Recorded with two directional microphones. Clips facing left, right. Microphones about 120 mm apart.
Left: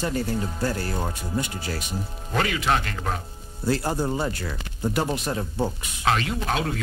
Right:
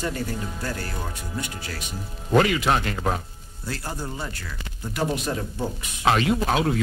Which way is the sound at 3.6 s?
30° left (ahead or behind).